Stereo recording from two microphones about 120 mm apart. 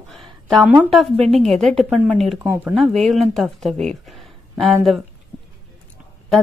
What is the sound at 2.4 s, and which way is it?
Speech, 20° right (ahead or behind).